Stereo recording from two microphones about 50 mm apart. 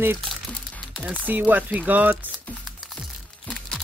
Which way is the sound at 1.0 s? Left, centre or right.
Right.